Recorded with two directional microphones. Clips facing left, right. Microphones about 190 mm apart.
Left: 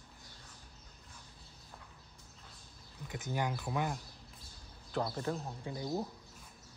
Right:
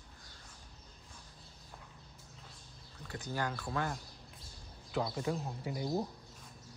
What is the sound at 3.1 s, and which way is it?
Speech, 20° left (ahead or behind).